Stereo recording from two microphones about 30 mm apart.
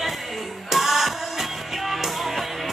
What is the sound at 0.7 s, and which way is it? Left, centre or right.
Music, centre.